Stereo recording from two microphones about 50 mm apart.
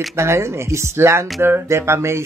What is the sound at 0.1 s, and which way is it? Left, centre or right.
Speech, right.